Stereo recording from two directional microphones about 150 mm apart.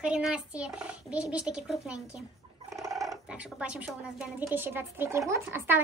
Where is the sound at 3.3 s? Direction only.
5° right (ahead or behind).